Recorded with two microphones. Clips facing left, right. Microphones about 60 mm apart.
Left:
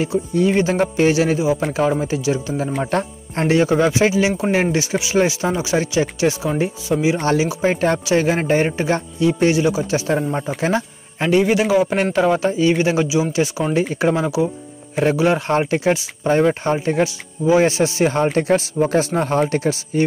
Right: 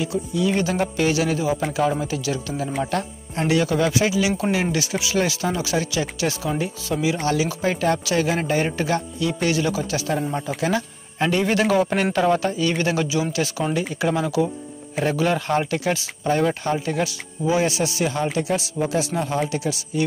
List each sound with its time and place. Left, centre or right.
0.0 s speech: left
0.5 s speech: left
11.1 s a man's voice: centre; by 20.1 s left